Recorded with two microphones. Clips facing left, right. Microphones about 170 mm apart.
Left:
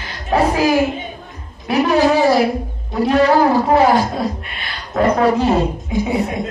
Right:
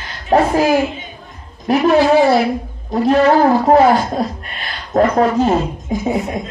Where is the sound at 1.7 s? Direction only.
40° right (ahead or behind).